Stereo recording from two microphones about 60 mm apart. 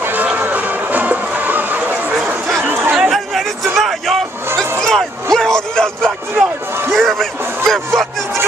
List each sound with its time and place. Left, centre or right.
0.0 s run: right
0.4 s music: right
2.6 s chatter: right
2.9 s a sound: centre
6.9 s speech: centre